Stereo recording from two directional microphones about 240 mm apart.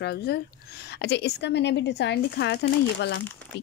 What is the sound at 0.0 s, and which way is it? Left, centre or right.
A woman's voice, left.